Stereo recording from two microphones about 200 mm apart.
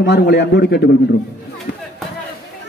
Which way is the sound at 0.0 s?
60° left (ahead or behind).